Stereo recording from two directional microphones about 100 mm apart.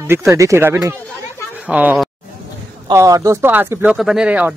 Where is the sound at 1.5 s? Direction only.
15° right (ahead or behind).